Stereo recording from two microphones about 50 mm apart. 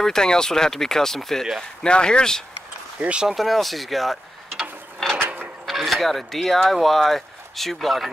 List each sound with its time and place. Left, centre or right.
0.0 s speech: centre
3.0 s speech: right
3.3 s speech: centre
5.0 s mechanisms: centre
5.7 s speech: centre